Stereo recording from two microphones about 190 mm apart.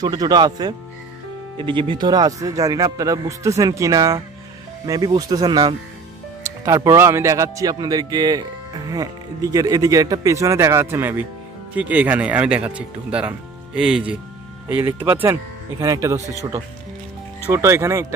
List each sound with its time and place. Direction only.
0.0 s speech: 20° right (ahead or behind)